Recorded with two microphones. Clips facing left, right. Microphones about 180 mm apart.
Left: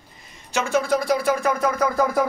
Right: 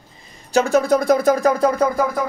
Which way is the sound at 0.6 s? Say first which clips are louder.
Right 6 dB; 40° right (ahead or behind).